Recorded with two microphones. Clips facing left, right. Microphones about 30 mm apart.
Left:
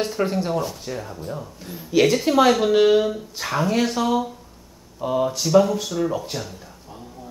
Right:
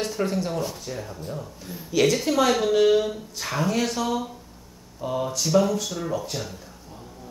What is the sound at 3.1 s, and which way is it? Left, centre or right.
Speech, centre.